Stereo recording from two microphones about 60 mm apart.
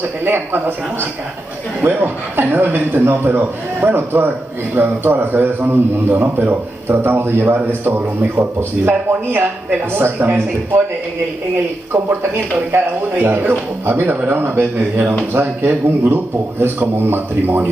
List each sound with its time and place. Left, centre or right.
0.2 s a man's voice: right
1.8 s a man's voice: right
12.2 s speech: right
13.1 s a man's voice: right
14.2 s speech: right
15.7 s speech: right
16.6 s a man's voice: right